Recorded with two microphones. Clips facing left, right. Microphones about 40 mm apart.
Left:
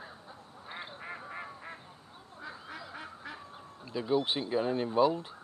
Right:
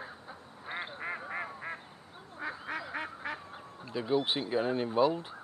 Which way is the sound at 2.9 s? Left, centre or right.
Right.